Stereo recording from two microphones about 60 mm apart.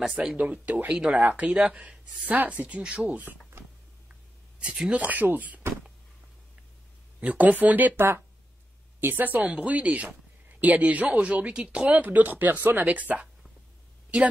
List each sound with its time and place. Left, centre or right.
0.0 s speech: centre
0.4 s speech: right
4.1 s writing: centre
4.9 s speech: right
7.2 s a woman's voice: right
9.4 s speech: centre